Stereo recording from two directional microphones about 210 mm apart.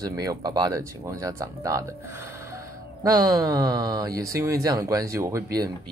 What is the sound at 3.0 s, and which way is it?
Speech, 15° right (ahead or behind).